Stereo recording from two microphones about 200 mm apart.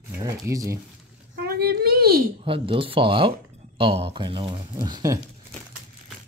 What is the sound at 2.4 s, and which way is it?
Speech, 25° right (ahead or behind).